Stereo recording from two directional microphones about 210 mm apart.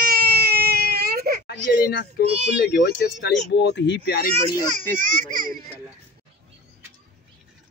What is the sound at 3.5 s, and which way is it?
Speech, 55° left (ahead or behind).